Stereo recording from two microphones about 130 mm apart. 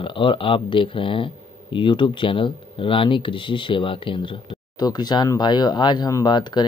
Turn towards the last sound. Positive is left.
turn(degrees=35)  # may be behind; listen again after turning